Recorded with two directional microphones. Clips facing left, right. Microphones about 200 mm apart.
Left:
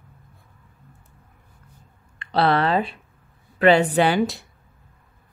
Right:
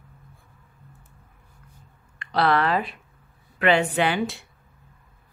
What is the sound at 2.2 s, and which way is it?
A woman's voice, 30° left (ahead or behind).